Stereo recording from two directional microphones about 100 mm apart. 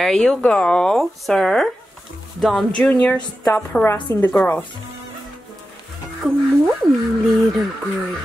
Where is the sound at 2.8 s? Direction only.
10° left (ahead or behind).